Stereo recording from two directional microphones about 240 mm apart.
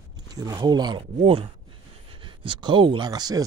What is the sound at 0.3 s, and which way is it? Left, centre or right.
Speech, centre.